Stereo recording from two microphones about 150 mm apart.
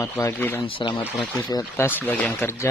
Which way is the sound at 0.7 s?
35° left (ahead or behind).